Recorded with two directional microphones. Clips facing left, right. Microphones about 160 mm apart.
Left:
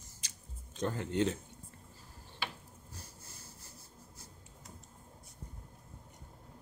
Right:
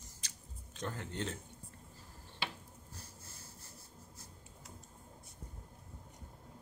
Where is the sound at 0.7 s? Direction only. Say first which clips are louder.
Left 8 dB; 20° left (ahead or behind).